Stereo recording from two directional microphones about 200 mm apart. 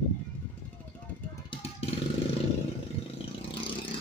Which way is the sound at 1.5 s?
25° left (ahead or behind).